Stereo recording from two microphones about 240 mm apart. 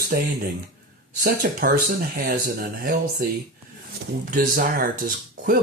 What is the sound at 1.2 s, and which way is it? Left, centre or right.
Speech, right.